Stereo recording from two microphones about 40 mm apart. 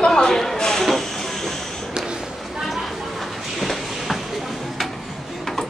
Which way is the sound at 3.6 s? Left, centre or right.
Centre.